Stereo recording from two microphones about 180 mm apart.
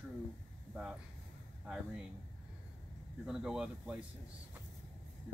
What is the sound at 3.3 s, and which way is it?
Speech, 5° right (ahead or behind).